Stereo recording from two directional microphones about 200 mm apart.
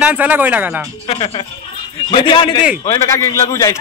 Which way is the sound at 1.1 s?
30° left (ahead or behind).